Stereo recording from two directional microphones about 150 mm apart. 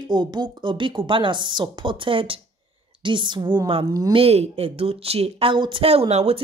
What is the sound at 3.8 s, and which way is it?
Speech, 25° right (ahead or behind).